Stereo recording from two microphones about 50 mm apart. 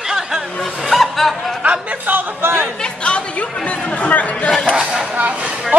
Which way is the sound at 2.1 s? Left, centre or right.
Right.